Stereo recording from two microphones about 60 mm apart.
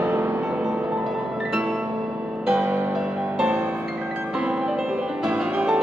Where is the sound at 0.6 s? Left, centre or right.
Centre.